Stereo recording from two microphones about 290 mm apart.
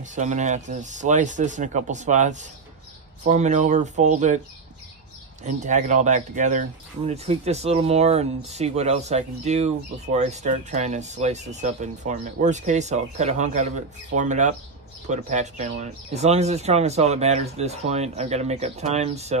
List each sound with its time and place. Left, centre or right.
0.0 s speech: right
5.4 s speech: right